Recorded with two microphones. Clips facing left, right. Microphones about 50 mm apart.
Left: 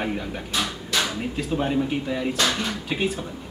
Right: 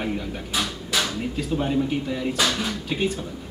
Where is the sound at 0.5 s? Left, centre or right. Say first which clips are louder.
Even; centre.